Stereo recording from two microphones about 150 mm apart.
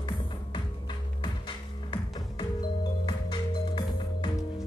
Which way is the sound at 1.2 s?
30° left (ahead or behind).